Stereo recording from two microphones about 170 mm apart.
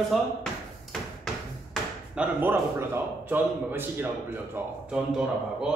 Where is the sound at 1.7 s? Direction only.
5° right (ahead or behind).